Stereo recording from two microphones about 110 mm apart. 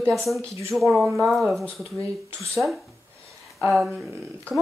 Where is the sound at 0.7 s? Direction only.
Centre (ahead or behind).